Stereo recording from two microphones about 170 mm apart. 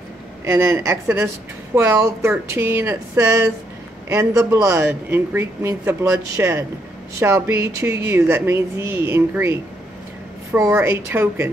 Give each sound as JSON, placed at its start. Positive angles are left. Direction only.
{"t": 0.5, "sound": "speech", "side_deg": -15}